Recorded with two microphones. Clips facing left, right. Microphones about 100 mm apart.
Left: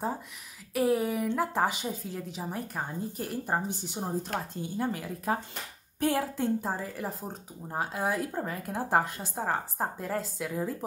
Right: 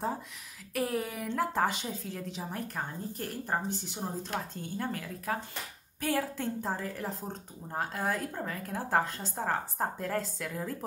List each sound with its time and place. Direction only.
0.7 s a woman's voice: 5° left (ahead or behind)